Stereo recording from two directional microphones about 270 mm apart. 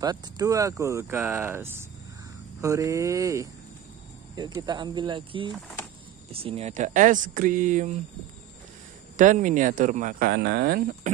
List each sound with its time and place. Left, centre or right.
0.0 s speech: centre
9.1 s speech: right